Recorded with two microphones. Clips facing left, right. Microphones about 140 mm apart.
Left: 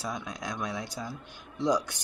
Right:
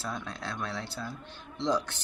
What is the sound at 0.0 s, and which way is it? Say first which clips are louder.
Speech: left 1 dB; 10° left (ahead or behind).